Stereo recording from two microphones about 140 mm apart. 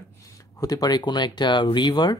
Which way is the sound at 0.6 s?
25° left (ahead or behind).